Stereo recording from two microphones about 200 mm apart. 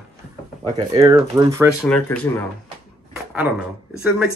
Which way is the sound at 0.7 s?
20° right (ahead or behind).